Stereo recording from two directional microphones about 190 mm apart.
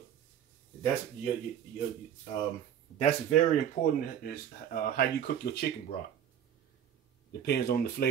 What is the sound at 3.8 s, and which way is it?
Speech, 50° left (ahead or behind).